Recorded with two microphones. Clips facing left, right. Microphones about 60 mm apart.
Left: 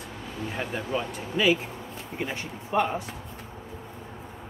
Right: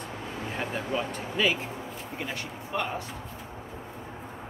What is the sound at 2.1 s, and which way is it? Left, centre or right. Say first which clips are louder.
Speech: left 4 dB; centre.